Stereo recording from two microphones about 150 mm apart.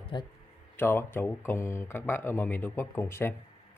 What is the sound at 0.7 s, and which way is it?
Speech, 15° left (ahead or behind).